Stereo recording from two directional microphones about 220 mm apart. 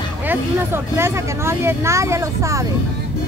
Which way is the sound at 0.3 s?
10° right (ahead or behind).